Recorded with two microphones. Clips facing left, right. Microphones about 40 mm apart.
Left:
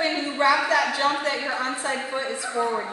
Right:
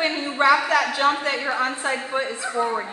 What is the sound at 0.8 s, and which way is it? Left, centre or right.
A woman's voice, right.